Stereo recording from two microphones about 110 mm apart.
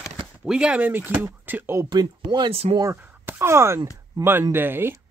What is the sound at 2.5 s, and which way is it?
Speech, 65° right (ahead or behind).